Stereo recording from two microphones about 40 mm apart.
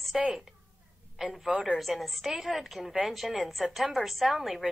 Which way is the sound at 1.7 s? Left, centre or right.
Centre.